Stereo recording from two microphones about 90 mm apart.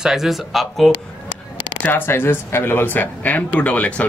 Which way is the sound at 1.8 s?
20° left (ahead or behind).